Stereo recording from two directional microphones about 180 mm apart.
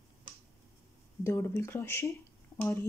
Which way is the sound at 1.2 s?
15° left (ahead or behind).